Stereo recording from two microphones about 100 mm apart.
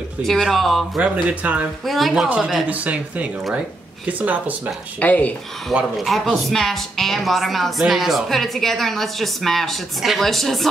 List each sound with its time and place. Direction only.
0.2 s a woman's voice: centre (ahead or behind)
0.9 s speech: 15° right (ahead or behind)
1.9 s a woman's voice: centre (ahead or behind)
5.0 s speech: 15° left (ahead or behind)
5.9 s a woman's voice: centre (ahead or behind)